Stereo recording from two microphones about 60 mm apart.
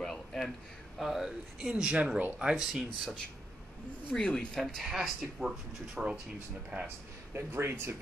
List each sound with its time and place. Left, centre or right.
0.0 s a sound: centre
0.9 s speech: centre
1.6 s speech: centre
2.5 s speech: centre
4.1 s speech: centre
4.8 s speech: centre
6.7 s speech: right
7.3 s speech: right